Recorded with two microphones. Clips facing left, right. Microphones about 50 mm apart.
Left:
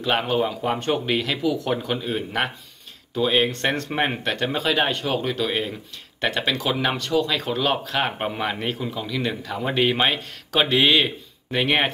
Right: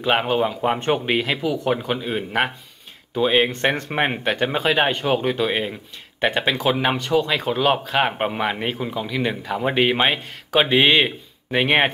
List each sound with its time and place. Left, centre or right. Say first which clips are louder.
0.0 s speech: right 2 dB; right
0.6 s speech: right 3 dB; right